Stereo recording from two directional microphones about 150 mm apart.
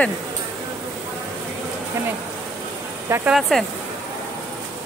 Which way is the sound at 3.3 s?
Centre (ahead or behind).